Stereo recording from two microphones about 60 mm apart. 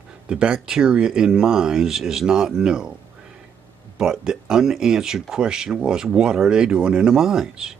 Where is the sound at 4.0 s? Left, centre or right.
Centre.